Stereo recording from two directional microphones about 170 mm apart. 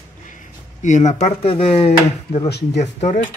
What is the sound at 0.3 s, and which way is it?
Speech, 45° left (ahead or behind).